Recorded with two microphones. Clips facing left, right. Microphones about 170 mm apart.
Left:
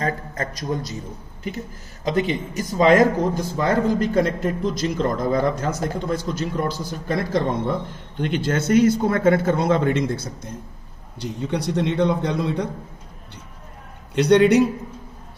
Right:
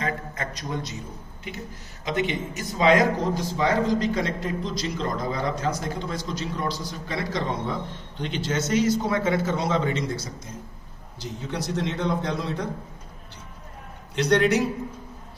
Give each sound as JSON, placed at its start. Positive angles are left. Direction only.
{"t": 0.0, "sound": "a sound", "side_deg": 45}
{"t": 2.0, "sound": "a man's voice", "side_deg": 35}
{"t": 14.1, "sound": "a man's voice", "side_deg": 60}